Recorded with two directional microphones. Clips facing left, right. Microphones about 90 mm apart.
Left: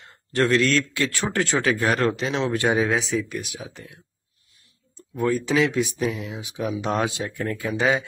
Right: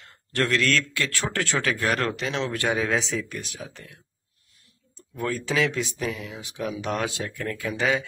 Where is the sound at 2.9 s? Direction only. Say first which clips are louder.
Left 2 dB; 5° left (ahead or behind).